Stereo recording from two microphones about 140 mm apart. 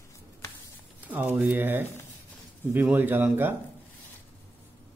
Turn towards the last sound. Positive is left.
turn(degrees=-15)  # may be behind; listen again after turning